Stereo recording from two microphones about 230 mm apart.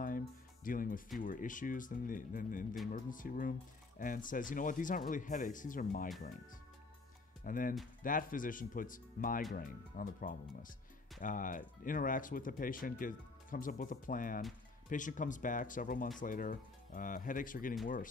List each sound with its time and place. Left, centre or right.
0.7 s speech: left
7.4 s speech: left